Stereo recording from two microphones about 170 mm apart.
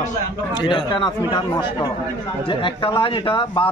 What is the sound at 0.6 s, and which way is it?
Speech, 30° left (ahead or behind).